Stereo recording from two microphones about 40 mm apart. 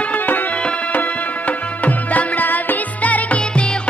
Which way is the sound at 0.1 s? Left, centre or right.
Left.